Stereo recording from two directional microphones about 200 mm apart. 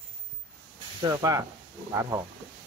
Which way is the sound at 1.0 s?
15° right (ahead or behind).